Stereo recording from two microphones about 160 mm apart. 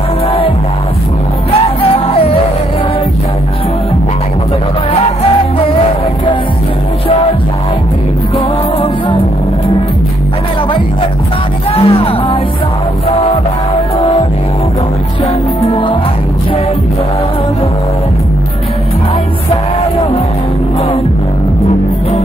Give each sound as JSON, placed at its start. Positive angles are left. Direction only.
{"t": 1.9, "sound": "music", "side_deg": 35}
{"t": 11.7, "sound": "music", "side_deg": 35}
{"t": 15.6, "sound": "music", "side_deg": 30}